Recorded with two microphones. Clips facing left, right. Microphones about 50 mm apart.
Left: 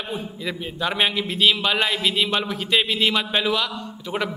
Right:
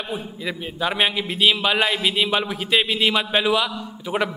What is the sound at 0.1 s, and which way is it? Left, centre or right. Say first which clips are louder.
A man's voice: right 1 dB; centre.